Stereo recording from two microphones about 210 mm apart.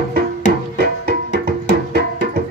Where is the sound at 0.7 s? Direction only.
50° right (ahead or behind).